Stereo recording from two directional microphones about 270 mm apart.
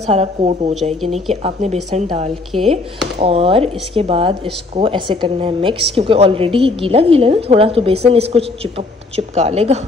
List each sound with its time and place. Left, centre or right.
0.0 s a woman's voice: right
1.0 s speech: centre
1.3 s a woman's voice: right